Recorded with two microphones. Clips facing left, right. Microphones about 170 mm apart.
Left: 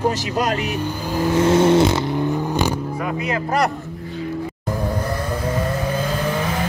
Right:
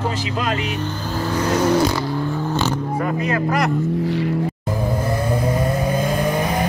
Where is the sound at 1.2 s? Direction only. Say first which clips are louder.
Left 4 dB; 25° left (ahead or behind).